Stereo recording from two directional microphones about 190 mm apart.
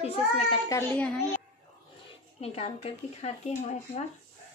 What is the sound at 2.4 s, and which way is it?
Speech, 30° left (ahead or behind).